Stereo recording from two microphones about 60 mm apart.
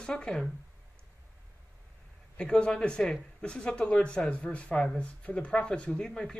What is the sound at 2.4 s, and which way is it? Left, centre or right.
Speech, centre.